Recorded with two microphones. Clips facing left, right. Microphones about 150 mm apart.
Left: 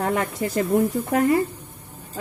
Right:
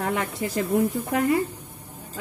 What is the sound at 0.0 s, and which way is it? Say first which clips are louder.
A woman's voice: left 3 dB; 40° left (ahead or behind).